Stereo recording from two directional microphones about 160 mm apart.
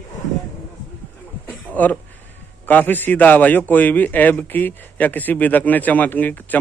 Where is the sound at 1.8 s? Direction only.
10° left (ahead or behind).